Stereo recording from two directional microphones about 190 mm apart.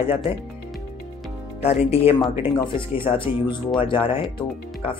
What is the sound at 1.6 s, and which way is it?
Speech, 35° left (ahead or behind).